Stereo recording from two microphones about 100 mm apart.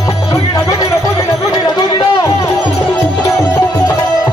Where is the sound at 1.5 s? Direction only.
40° left (ahead or behind).